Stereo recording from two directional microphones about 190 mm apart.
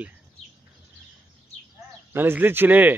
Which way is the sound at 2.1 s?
10° right (ahead or behind).